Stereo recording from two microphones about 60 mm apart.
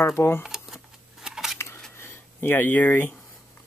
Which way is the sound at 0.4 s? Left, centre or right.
Centre.